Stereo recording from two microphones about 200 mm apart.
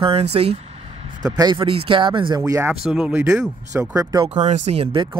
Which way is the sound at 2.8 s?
5° right (ahead or behind).